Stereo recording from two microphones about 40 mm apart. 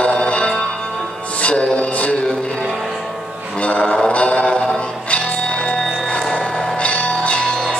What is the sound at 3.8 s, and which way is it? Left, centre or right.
Music, left.